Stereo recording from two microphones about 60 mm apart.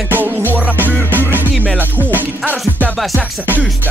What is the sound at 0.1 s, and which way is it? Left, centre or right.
Music, right.